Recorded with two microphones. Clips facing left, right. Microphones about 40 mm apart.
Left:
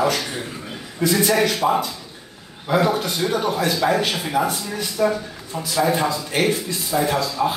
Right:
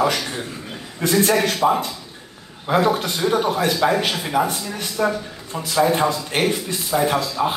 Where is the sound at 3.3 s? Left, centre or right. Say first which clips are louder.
Right 2 dB; right.